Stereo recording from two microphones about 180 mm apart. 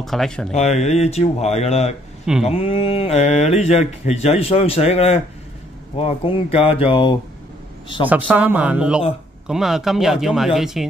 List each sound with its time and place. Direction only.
0.0 s speech: centre (ahead or behind)
0.5 s speech: 40° left (ahead or behind)
8.1 s speech: 10° right (ahead or behind)